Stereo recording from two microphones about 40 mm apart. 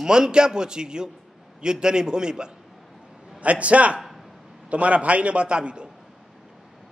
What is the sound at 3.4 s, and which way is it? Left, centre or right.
A man's voice, right.